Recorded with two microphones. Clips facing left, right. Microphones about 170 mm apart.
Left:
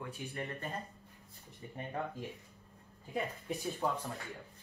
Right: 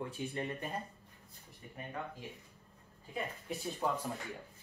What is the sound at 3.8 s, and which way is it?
Speech, 10° right (ahead or behind).